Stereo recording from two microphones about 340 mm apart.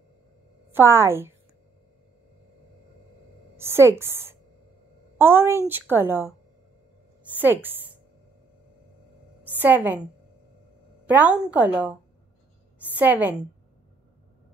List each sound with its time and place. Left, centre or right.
0.7 s a woman's voice: centre
3.5 s a woman's voice: centre
7.3 s a woman's voice: centre
9.6 s a woman's voice: centre
11.1 s a woman's voice: centre
12.9 s a woman's voice: centre